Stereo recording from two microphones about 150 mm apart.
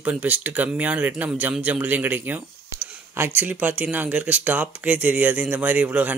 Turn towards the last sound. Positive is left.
turn(degrees=-10)  # may be behind; listen again after turning